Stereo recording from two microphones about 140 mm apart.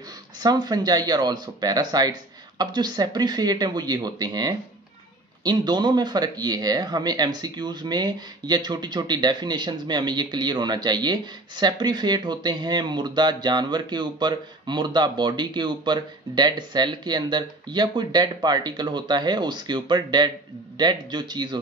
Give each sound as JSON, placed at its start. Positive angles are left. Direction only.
{"t": 0.4, "sound": "speech", "side_deg": -30}